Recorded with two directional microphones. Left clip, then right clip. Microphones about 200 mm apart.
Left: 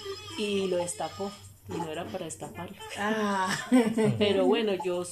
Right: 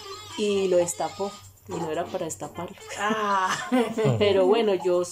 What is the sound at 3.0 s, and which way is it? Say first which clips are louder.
Speech: right 5 dB; 20° left (ahead or behind).